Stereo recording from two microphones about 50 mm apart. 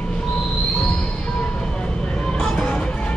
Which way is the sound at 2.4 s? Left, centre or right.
Centre.